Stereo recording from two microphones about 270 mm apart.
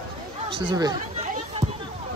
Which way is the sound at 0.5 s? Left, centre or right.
Centre.